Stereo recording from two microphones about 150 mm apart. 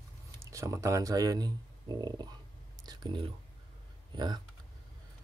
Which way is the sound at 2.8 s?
25° right (ahead or behind).